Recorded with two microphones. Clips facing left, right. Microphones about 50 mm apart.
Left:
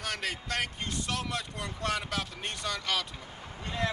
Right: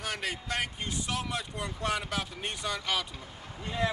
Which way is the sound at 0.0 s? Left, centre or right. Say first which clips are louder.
Even; centre.